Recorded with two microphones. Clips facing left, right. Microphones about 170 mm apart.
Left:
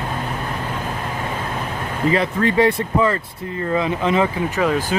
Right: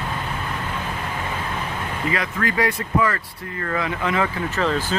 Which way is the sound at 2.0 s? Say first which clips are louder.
Left 7 dB; 30° left (ahead or behind).